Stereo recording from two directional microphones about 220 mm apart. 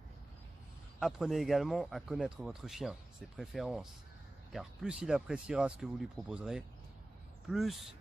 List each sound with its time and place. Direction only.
0.9 s speech: centre (ahead or behind)